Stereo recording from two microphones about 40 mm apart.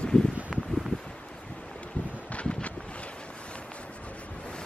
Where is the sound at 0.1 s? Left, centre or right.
Left.